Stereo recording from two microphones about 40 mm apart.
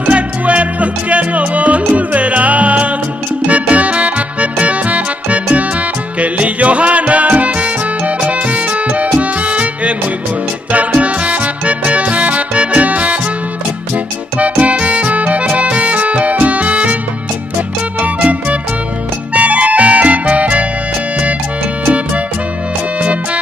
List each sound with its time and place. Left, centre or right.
0.0 s music: right
14.4 s music: right
19.3 s music: right
21.8 s music: right